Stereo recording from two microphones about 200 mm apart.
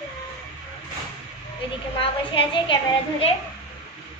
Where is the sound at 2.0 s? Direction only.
25° left (ahead or behind).